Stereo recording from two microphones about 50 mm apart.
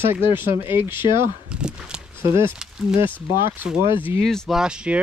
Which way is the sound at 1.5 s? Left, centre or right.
Centre.